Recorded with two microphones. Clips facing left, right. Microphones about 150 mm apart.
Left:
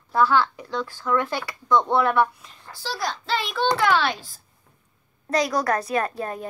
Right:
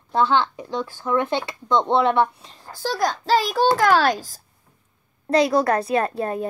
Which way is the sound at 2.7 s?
50° right (ahead or behind).